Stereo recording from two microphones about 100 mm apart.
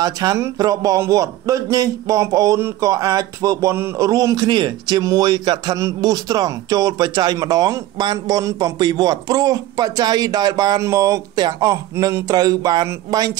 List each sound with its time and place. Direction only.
0.0 s speech: 40° right (ahead or behind)
3.7 s a man's voice: 25° right (ahead or behind)
4.1 s speech: 35° right (ahead or behind)
4.5 s speech: 50° right (ahead or behind)
5.8 s speech: 35° right (ahead or behind)